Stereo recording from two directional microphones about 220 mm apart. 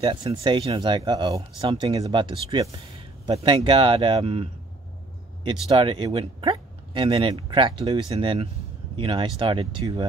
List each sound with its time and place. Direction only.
0.0 s speech: 20° right (ahead or behind)